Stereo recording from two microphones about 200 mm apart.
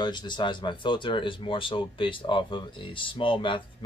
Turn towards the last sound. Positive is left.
turn(degrees=25)  # may be behind; listen again after turning